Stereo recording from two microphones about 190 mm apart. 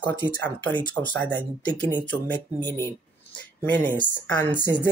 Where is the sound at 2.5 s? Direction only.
20° right (ahead or behind).